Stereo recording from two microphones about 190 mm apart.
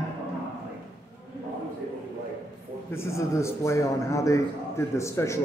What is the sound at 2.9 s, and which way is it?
A man's voice, 15° left (ahead or behind).